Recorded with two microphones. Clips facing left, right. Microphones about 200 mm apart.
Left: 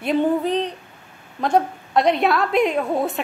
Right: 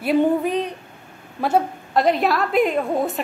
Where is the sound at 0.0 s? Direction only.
10° right (ahead or behind).